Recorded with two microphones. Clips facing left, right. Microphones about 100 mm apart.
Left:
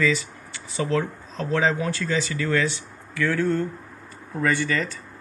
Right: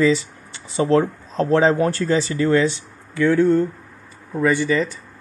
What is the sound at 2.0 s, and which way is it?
Speech, 30° right (ahead or behind).